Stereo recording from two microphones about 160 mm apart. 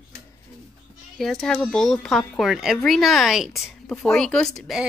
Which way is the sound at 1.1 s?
Centre (ahead or behind).